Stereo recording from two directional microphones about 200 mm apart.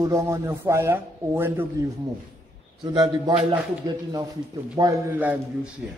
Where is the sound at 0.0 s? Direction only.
15° right (ahead or behind).